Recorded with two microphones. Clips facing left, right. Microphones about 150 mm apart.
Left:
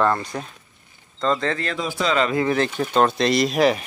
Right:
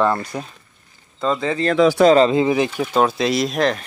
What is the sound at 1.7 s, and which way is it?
Speech, 85° right.